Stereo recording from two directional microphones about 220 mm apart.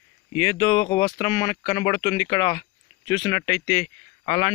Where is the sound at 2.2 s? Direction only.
10° left (ahead or behind).